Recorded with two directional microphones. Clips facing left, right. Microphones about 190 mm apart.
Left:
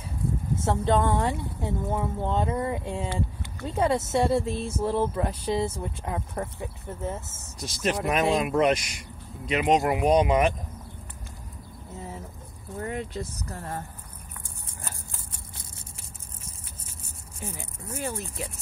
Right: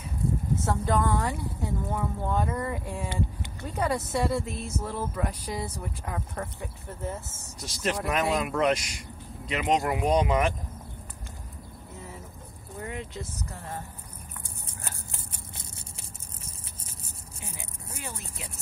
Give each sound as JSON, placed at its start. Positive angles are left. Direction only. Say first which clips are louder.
{"t": 0.6, "sound": "speech", "louder": "left 5 dB", "side_deg": 25}
{"t": 12.8, "sound": "speech", "louder": "left 5 dB", "side_deg": 40}